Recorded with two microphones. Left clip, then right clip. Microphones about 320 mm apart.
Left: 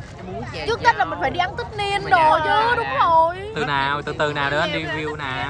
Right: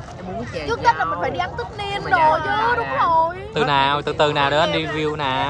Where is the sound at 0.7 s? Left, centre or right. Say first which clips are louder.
Even; left.